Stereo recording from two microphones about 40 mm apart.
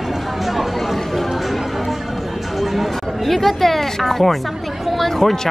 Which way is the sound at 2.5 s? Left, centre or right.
Centre.